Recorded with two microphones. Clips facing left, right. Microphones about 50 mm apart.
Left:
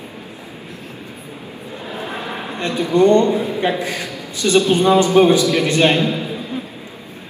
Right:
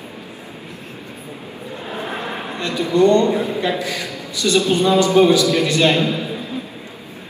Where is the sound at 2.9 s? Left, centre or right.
Left.